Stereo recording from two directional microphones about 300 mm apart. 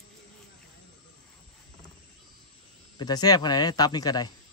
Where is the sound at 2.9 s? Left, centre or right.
Centre.